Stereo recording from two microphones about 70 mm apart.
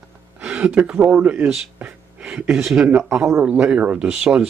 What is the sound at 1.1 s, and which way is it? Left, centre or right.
Speech, centre.